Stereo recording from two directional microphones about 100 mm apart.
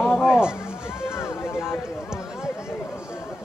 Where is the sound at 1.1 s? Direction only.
25° left (ahead or behind).